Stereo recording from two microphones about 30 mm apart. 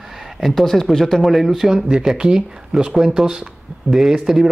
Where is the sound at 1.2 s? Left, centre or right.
Centre.